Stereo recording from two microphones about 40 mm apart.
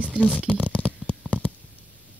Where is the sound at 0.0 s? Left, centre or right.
Right.